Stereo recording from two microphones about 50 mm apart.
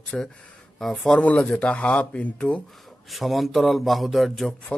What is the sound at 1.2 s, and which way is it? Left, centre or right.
Speech, left.